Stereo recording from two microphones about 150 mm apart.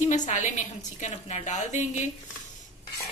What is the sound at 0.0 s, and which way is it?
A woman's voice, 55° left (ahead or behind).